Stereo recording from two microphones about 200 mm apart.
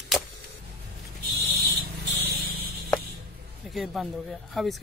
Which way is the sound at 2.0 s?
55° right (ahead or behind).